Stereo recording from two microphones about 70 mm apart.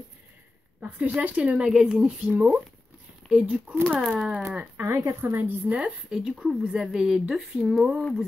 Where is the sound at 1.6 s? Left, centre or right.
Centre.